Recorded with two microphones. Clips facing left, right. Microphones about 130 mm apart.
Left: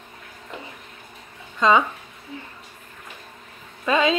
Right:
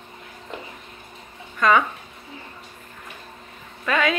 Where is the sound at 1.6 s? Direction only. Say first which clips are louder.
Left 1 dB; 20° left (ahead or behind).